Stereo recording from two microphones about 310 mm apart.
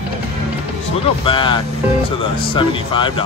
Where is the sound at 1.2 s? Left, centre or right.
Centre.